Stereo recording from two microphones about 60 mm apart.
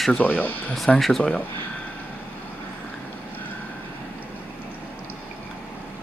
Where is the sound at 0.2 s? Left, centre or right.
Left.